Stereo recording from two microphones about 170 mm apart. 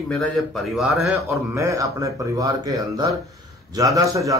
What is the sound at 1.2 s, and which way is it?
Speech, 15° right (ahead or behind).